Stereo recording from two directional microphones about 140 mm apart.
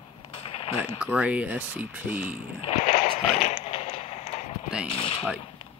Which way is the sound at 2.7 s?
60° left (ahead or behind).